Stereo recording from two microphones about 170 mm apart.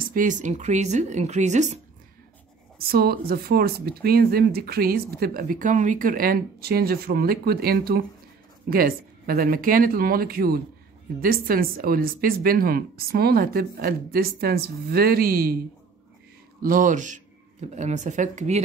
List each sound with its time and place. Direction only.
0.1 s speech: 50° right (ahead or behind)
2.9 s speech: 65° right (ahead or behind)
16.6 s speech: 50° right (ahead or behind)